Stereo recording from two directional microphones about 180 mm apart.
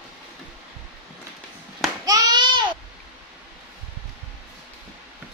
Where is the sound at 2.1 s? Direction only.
20° right (ahead or behind).